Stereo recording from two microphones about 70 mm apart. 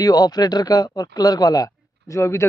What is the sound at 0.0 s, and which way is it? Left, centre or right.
A man's voice, left.